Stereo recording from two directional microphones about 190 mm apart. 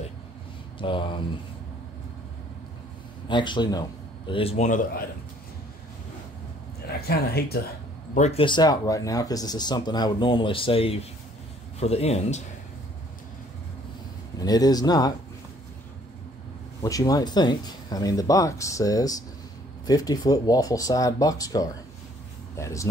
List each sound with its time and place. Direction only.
0.7 s speech: 25° left (ahead or behind)
3.3 s speech: 25° left (ahead or behind); by 5.0 s 40° left (ahead or behind)
7.1 s speech: 55° left (ahead or behind)
8.1 s speech: 35° left (ahead or behind)
14.4 s speech: 20° left (ahead or behind)
16.8 s speech: 20° left (ahead or behind)